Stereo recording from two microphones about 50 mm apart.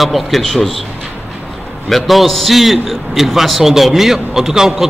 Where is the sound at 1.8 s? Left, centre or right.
Centre.